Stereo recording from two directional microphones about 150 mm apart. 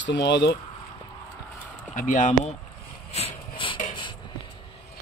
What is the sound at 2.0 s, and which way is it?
Speech, 60° left (ahead or behind).